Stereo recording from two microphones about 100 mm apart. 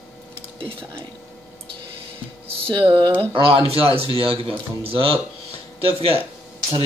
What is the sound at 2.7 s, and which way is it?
A man's voice, 55° right (ahead or behind).